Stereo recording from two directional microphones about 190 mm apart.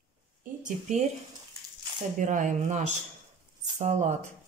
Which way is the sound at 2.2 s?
40° right (ahead or behind).